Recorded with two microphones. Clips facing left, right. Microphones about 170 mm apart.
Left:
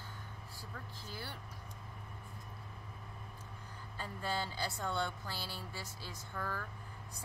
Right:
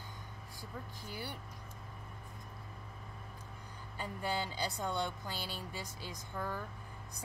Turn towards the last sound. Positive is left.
turn(degrees=-15)  # may be behind; listen again after turning